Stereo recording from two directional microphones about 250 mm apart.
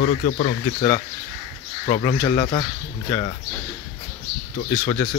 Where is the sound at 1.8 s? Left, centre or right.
Left.